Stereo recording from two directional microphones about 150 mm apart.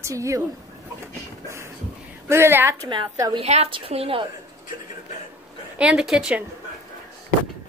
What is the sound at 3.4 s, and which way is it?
Speech, 45° right (ahead or behind).